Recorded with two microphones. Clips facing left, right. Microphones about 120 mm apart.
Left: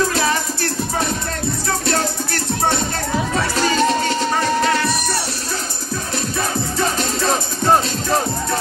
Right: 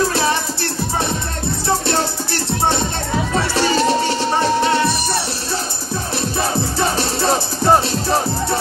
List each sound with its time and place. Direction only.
1.9 s music: 30° right (ahead or behind)
6.5 s music: 30° right (ahead or behind)